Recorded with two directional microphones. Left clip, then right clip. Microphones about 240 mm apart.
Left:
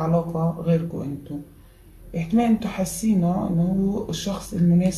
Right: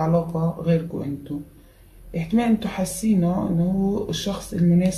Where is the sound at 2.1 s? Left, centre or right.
Centre.